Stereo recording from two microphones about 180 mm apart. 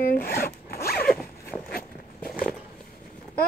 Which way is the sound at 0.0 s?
55° left (ahead or behind).